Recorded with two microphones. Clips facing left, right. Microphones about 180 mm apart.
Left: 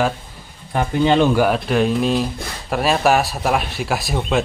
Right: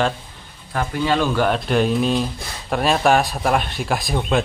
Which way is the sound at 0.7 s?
25° left (ahead or behind).